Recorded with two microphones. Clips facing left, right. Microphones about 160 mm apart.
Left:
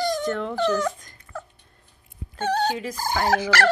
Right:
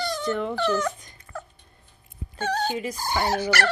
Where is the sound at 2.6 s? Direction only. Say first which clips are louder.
Left 2 dB; 5° right (ahead or behind).